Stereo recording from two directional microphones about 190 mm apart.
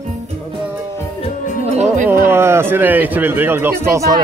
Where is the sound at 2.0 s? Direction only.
10° right (ahead or behind).